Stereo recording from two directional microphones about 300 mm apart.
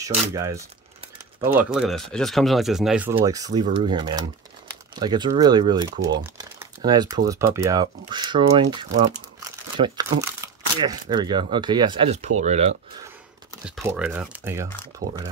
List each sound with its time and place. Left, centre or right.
0.3 s speech: centre
13.7 s speech: centre
15.0 s speech: right